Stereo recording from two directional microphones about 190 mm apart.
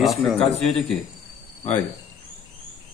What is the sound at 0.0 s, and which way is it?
Speech, centre (ahead or behind).